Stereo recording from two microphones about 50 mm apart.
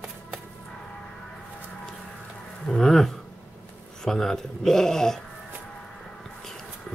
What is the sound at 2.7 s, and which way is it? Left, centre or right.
Speech, centre.